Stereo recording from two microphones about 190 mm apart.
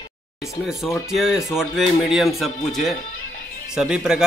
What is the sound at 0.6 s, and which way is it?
Speech, centre (ahead or behind).